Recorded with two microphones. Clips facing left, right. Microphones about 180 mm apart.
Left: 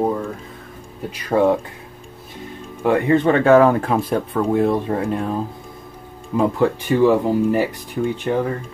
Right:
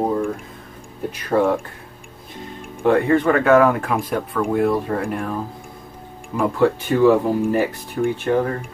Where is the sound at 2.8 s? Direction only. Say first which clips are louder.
Even; 20° left (ahead or behind).